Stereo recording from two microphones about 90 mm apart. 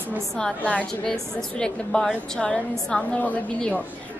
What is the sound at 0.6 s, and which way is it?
A woman's voice, 15° left (ahead or behind).